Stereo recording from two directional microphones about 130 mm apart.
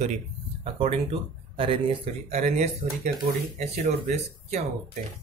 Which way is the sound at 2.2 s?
60° right (ahead or behind).